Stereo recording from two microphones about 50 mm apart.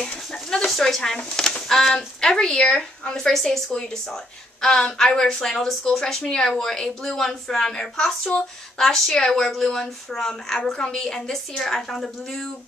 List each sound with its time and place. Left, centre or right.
0.0 s speech: centre